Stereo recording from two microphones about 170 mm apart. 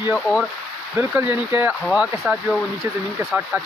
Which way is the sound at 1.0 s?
10° right (ahead or behind).